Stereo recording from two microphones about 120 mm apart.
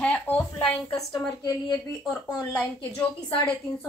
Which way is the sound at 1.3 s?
30° left (ahead or behind).